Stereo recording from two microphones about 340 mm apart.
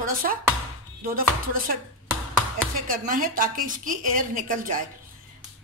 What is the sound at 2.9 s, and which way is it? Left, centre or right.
Speech, right.